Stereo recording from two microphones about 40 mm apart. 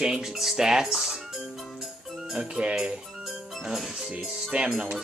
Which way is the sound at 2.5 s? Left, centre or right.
Right.